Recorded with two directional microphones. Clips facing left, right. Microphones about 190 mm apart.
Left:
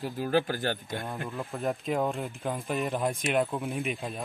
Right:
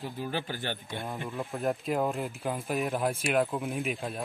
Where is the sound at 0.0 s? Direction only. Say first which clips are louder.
Left 7 dB; 45° left (ahead or behind).